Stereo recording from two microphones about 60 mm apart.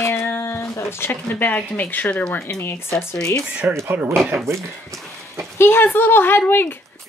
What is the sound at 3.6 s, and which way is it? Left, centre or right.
Speech, right.